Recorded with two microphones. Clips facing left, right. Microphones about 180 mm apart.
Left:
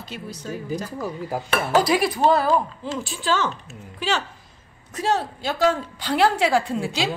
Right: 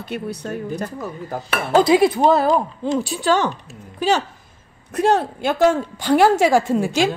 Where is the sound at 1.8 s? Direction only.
25° right (ahead or behind).